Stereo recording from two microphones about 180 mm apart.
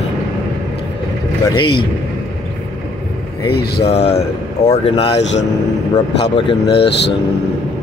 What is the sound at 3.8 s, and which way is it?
Speech, 35° left (ahead or behind).